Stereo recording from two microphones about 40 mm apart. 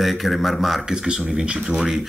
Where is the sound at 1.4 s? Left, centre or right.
Right.